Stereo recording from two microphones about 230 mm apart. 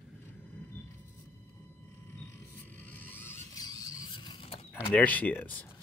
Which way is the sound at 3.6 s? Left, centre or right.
Centre.